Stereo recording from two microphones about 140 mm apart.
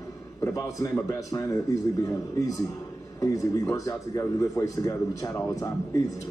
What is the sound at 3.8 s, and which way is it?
A man's voice, 25° left (ahead or behind).